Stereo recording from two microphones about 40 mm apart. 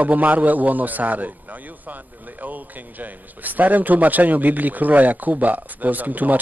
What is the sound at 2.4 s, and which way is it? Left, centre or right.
A man's voice, right.